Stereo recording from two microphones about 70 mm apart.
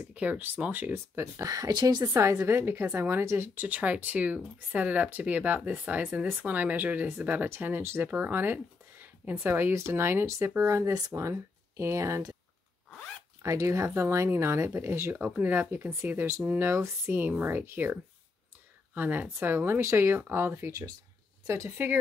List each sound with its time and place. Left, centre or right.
0.0 s speech: right
0.9 s speech: right
2.1 s speech: right
3.6 s speech: right
10.9 s speech: right
11.1 s speech: right
13.4 s speech: right
15.1 s speech: right
18.9 s speech: right
21.5 s speech: right